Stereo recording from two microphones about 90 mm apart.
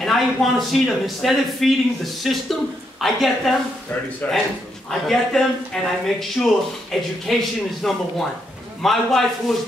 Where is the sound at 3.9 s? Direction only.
15° left (ahead or behind).